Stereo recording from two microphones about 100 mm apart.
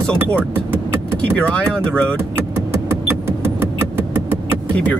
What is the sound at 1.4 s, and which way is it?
Speech, 10° left (ahead or behind).